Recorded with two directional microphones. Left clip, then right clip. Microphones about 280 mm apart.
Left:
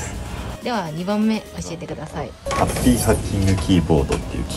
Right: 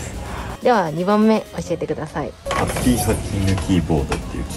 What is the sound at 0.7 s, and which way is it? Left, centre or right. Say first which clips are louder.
Speech: right 7 dB; right.